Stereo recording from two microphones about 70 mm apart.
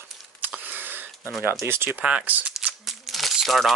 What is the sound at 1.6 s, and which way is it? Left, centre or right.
Speech, right.